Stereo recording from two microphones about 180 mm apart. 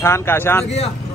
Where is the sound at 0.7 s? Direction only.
35° left (ahead or behind).